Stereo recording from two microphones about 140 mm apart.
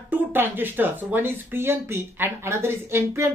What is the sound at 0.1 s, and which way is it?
Speech, 15° right (ahead or behind).